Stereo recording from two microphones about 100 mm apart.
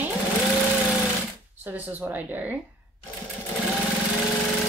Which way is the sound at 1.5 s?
20° right (ahead or behind).